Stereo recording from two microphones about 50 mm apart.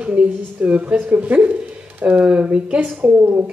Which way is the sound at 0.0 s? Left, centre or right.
Right.